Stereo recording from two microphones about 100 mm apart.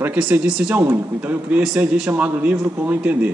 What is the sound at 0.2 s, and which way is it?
Speech, 10° right (ahead or behind).